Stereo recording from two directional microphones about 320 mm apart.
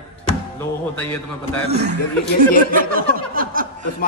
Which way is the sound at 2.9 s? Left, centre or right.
Right.